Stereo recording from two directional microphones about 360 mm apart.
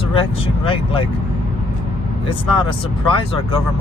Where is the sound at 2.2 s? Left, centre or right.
Centre.